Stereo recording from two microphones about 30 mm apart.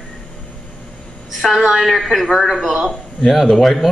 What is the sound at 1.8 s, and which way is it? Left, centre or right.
Speech, centre.